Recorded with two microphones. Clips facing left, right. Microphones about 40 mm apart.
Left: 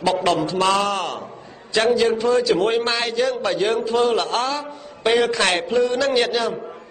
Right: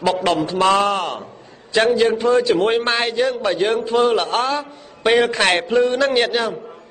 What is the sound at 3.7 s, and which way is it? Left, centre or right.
A man's voice, centre.